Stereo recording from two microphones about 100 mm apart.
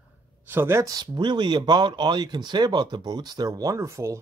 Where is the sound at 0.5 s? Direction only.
25° right (ahead or behind).